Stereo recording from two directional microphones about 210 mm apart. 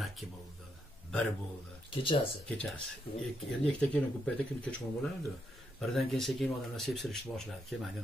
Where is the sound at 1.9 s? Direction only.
25° left (ahead or behind).